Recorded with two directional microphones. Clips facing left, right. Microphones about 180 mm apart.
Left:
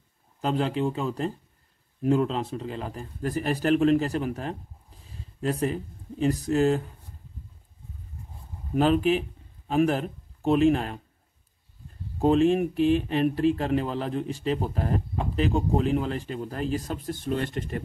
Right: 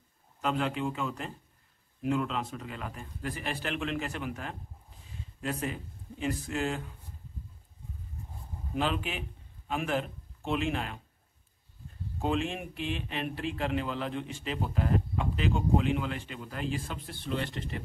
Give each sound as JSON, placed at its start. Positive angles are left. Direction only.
{"t": 0.4, "sound": "speech", "side_deg": 35}
{"t": 8.7, "sound": "speech", "side_deg": 45}
{"t": 12.2, "sound": "speech", "side_deg": 40}